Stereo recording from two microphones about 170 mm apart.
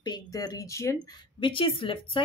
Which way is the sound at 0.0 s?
25° left (ahead or behind).